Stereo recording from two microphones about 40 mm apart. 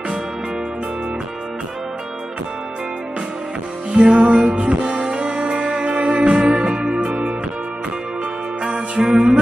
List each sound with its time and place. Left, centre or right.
3.9 s music: right
7.1 s music: right
8.6 s music: centre